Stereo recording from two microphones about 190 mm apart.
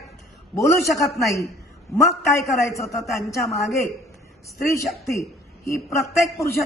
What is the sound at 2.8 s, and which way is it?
Speech, centre (ahead or behind).